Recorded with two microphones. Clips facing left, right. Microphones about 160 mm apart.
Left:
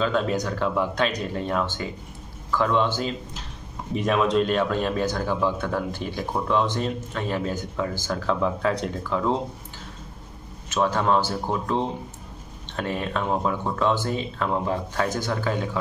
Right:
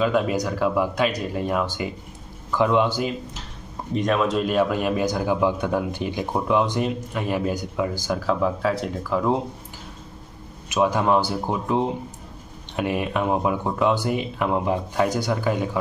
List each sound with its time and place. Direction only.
0.0 s speech: 10° right (ahead or behind)
3.9 s speech: centre (ahead or behind)
10.7 s speech: 10° right (ahead or behind)